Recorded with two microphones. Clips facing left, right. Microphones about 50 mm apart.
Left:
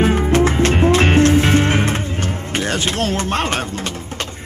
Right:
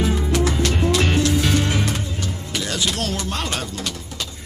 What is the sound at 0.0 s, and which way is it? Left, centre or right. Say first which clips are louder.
Music: left 6 dB; left.